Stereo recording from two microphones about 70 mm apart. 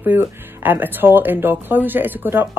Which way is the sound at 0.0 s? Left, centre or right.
Right.